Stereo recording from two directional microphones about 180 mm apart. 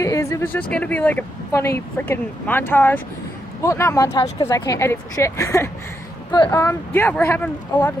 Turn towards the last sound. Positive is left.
turn(degrees=10)  # may be behind; listen again after turning